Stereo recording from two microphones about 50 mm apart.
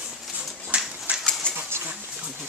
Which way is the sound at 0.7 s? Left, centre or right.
Right.